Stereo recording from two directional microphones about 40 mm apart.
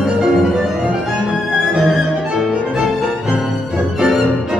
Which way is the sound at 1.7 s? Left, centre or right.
Centre.